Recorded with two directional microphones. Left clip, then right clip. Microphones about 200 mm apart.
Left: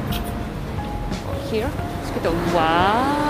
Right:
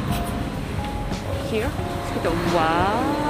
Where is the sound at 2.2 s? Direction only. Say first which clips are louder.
Left 2 dB; 5° left (ahead or behind).